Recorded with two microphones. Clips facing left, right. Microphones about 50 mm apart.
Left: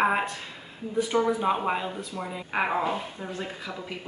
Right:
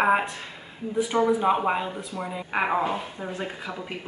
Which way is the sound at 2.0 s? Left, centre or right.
Right.